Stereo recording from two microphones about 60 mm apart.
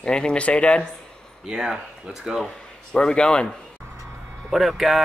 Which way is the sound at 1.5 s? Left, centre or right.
Centre.